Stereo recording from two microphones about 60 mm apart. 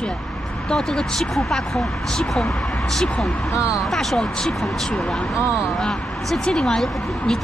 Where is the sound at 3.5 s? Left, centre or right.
Left.